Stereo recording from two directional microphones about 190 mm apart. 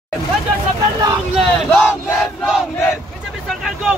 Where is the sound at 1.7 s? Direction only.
10° left (ahead or behind).